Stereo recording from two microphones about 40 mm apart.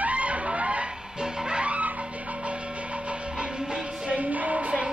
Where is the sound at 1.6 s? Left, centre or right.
Right.